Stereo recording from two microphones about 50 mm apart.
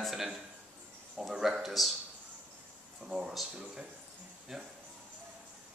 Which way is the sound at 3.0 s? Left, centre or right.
Centre.